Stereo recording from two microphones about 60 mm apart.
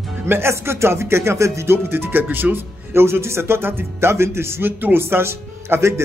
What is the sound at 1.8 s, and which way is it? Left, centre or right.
Speech, right.